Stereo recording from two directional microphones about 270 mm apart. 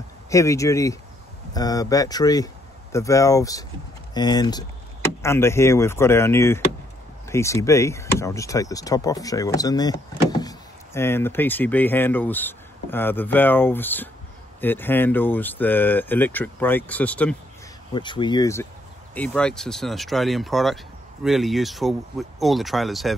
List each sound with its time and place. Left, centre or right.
0.3 s speech: centre
17.9 s speech: centre